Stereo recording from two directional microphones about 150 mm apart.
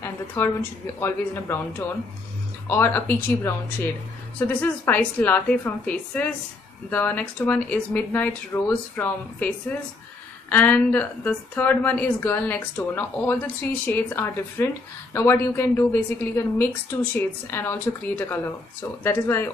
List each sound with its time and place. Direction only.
0.0 s a woman's voice: 15° left (ahead or behind)